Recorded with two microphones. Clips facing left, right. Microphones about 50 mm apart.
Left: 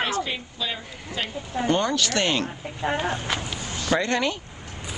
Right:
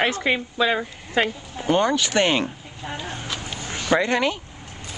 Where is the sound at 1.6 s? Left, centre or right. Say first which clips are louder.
Right 3 dB; centre.